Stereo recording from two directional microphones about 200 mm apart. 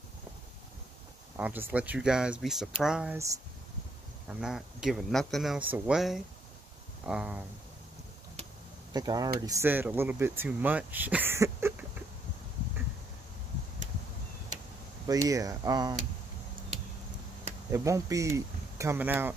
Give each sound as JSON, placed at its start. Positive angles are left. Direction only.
{"t": 1.3, "sound": "speech", "side_deg": -10}
{"t": 4.3, "sound": "speech", "side_deg": -5}
{"t": 8.9, "sound": "speech", "side_deg": -20}
{"t": 15.0, "sound": "speech", "side_deg": -15}
{"t": 17.6, "sound": "speech", "side_deg": -15}